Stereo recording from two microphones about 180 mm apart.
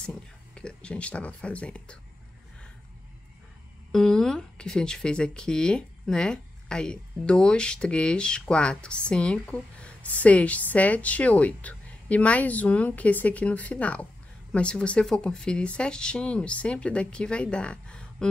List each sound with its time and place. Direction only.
0.6 s speech: 5° left (ahead or behind)
3.9 s speech: 5° left (ahead or behind)